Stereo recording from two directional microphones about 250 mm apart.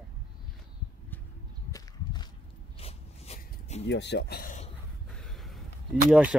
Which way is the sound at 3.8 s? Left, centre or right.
Left.